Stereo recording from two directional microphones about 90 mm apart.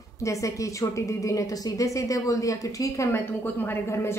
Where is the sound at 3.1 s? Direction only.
25° left (ahead or behind).